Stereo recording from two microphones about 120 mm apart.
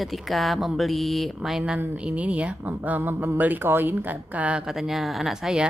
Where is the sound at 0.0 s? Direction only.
Centre (ahead or behind).